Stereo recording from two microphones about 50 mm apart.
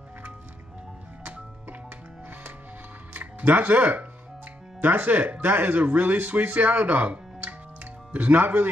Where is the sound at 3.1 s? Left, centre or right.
Right.